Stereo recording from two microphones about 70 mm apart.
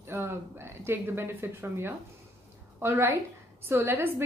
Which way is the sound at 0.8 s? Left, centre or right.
Right.